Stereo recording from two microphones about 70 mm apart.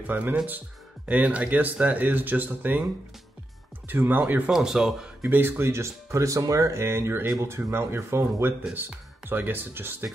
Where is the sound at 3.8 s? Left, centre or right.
Right.